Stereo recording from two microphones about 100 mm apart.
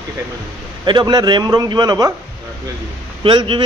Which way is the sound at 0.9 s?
45° right (ahead or behind).